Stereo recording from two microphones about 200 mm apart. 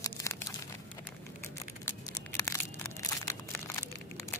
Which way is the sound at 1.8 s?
15° left (ahead or behind).